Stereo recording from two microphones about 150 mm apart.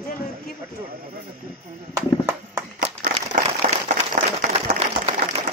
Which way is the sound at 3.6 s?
65° right (ahead or behind).